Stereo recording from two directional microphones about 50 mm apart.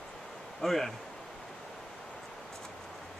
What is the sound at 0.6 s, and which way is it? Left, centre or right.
Speech, centre.